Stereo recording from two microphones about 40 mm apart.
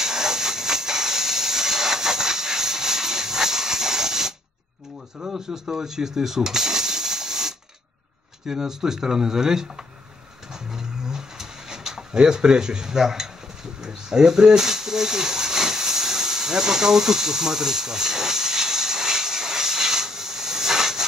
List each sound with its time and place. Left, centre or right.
0.0 s steam: centre
5.3 s speech: centre
10.5 s a sound: centre